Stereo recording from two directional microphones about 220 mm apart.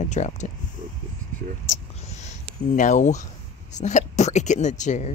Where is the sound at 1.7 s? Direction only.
30° left (ahead or behind).